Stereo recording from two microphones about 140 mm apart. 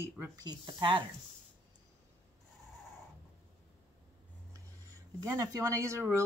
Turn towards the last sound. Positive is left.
turn(degrees=-20)  # may be behind; listen again after turning